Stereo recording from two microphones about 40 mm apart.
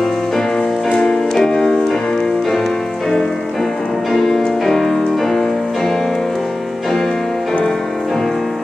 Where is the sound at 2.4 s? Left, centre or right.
Centre.